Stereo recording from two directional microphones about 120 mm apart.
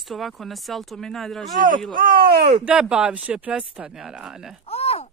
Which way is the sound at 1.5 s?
90° right.